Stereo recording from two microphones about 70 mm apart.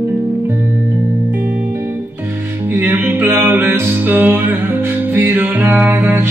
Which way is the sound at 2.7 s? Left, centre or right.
Right.